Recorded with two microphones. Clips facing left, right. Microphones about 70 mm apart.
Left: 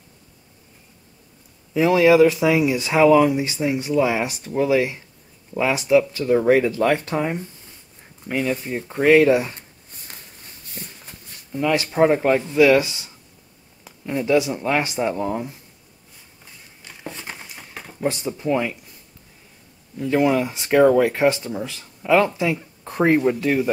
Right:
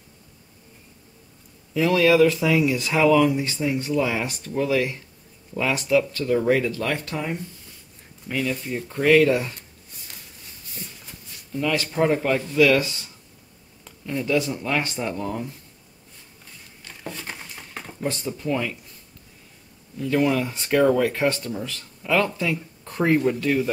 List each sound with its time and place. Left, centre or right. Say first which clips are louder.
1.7 s speech: left 3 dB; centre
9.6 s a sound: left 1 dB; left
10.8 s shuffle: left 2 dB; left
11.5 s speech: left 4 dB; centre
16.8 s a sound: even; centre
18.0 s speech: left 4 dB; centre
20.0 s speech: left 3 dB; centre